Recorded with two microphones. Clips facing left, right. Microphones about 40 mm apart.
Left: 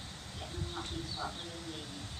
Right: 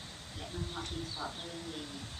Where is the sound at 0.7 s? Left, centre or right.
Centre.